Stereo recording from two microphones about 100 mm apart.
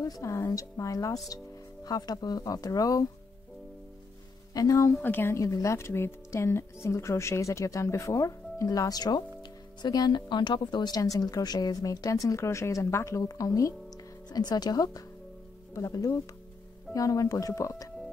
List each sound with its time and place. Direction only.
0.0 s speech: 35° left (ahead or behind)
4.6 s speech: 35° left (ahead or behind)
4.9 s speech: 20° left (ahead or behind)
5.4 s speech: 30° left (ahead or behind)